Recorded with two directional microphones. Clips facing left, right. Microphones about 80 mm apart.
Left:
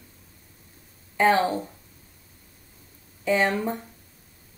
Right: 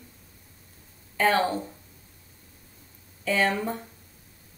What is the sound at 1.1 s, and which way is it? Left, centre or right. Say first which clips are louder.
Speech: left 3 dB; left.